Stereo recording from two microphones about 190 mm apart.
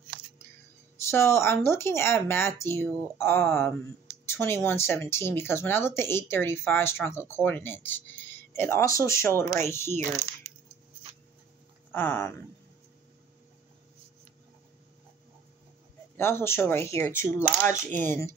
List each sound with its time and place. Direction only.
0.9 s speech: 15° left (ahead or behind)
11.9 s speech: 10° left (ahead or behind)
16.2 s speech: 10° left (ahead or behind)
17.6 s speech: 40° right (ahead or behind)
18.0 s speech: 15° left (ahead or behind)